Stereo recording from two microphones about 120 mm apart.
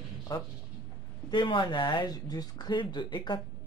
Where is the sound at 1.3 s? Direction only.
40° left (ahead or behind).